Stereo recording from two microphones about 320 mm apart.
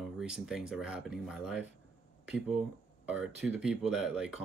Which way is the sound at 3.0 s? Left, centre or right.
Centre.